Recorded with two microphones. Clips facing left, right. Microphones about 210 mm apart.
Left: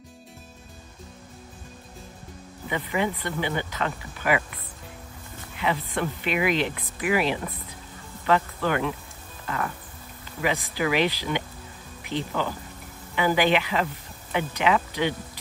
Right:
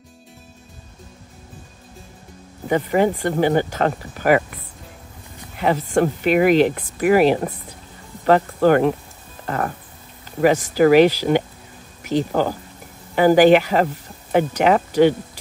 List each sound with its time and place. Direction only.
2.7 s speech: 45° right (ahead or behind)
5.6 s speech: 45° right (ahead or behind)
10.4 s speech: 45° right (ahead or behind)